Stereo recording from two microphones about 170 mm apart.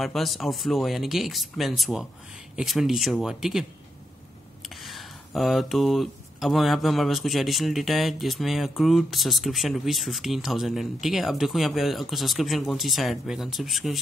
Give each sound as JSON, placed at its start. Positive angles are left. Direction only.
{"t": 0.0, "sound": "speech", "side_deg": 0}
{"t": 4.8, "sound": "speech", "side_deg": 0}